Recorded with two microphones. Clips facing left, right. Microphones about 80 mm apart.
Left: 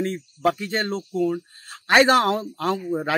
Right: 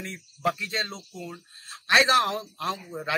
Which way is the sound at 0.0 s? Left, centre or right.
Left.